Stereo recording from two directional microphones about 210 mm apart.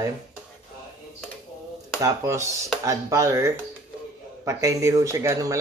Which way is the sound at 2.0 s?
15° right (ahead or behind).